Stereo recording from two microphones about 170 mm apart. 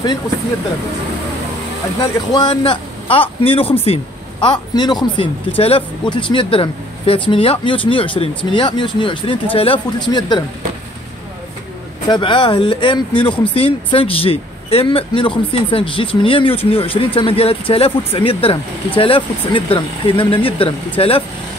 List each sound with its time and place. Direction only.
2.3 s speech: 30° left (ahead or behind)
12.1 s speech: 30° left (ahead or behind)